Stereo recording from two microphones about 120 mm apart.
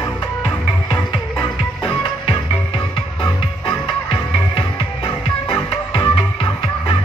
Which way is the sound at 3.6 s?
45° left (ahead or behind).